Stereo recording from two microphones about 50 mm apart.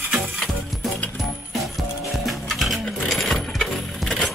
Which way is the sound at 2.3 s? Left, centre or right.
Centre.